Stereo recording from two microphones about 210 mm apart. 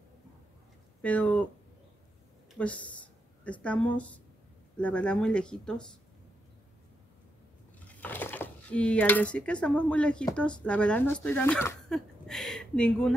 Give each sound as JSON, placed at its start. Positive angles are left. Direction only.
{"t": 1.0, "sound": "speech", "side_deg": 5}
{"t": 2.5, "sound": "speech", "side_deg": 5}
{"t": 7.8, "sound": "speech", "side_deg": 10}